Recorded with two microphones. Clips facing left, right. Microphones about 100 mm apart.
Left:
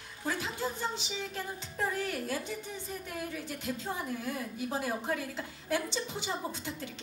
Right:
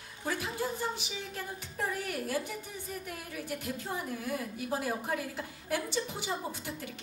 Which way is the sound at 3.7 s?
20° left (ahead or behind).